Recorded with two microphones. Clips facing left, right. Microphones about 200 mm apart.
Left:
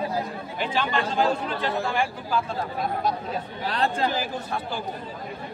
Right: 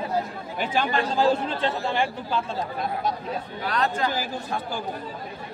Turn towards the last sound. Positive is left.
turn(degrees=30)  # may be behind; listen again after turning